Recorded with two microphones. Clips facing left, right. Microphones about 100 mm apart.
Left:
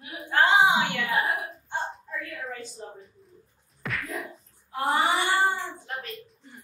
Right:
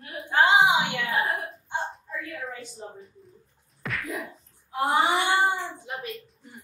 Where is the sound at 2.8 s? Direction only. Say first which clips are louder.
Even; 15° right (ahead or behind).